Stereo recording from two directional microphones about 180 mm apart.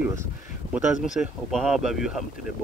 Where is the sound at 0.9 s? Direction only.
45° left (ahead or behind).